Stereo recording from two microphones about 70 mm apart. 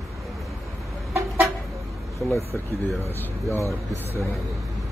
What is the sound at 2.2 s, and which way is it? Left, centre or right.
Speech, left.